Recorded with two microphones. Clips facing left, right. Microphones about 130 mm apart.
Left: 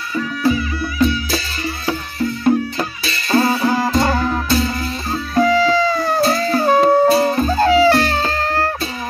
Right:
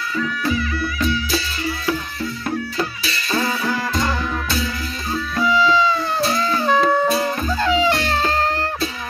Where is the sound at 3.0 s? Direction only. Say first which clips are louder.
Left 11 dB; 35° left (ahead or behind).